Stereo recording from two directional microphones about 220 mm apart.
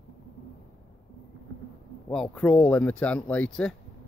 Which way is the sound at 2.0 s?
5° left (ahead or behind).